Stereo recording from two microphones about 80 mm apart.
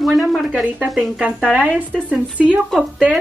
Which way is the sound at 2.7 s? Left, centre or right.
Centre.